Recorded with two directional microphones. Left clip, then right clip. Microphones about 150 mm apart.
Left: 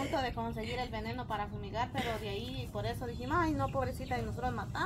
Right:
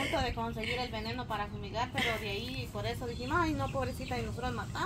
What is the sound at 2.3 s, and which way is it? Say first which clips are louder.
A woman's voice: right 2 dB; 5° left (ahead or behind).